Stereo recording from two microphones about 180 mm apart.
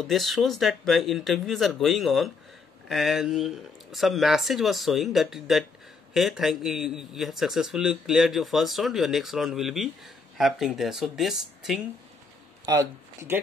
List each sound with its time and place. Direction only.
0.0 s a man's voice: centre (ahead or behind)
12.6 s speech: 15° right (ahead or behind)